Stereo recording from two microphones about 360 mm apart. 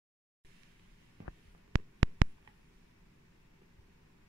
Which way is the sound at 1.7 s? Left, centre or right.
Right.